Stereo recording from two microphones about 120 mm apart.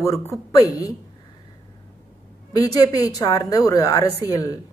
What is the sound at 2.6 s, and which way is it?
A woman's voice, 30° left (ahead or behind).